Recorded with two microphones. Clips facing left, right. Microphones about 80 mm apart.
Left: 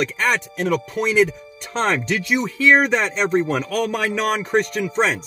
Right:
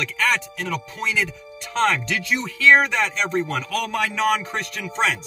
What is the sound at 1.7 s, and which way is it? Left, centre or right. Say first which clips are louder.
Speech: even; left.